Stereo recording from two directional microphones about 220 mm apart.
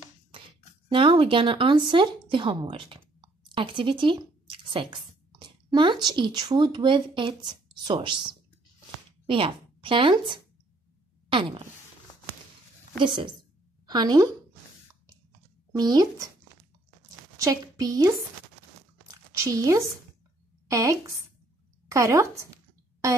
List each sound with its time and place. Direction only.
0.8 s a woman's voice: 25° right (ahead or behind)
13.0 s a woman's voice: 20° right (ahead or behind)
15.7 s speech: 20° right (ahead or behind)
17.4 s a woman's voice: 15° right (ahead or behind)
19.0 s a sound: 15° right (ahead or behind)
20.6 s a woman's voice: 15° right (ahead or behind)